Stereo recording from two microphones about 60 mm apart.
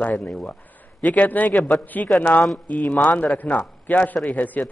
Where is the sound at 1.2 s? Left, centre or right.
Left.